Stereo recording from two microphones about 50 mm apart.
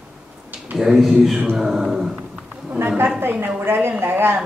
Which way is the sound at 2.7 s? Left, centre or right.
Right.